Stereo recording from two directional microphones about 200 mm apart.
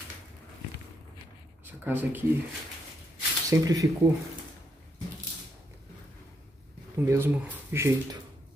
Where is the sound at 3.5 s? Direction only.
15° right (ahead or behind).